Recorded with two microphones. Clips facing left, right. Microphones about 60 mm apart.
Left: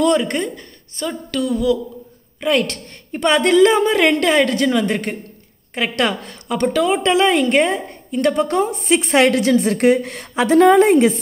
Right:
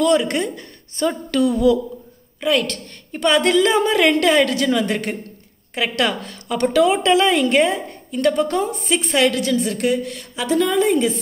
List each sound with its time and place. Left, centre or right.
0.0 s a woman's voice: centre
3.1 s a woman's voice: centre
7.1 s a woman's voice: centre
7.5 s a woman's voice: centre
9.1 s a woman's voice: left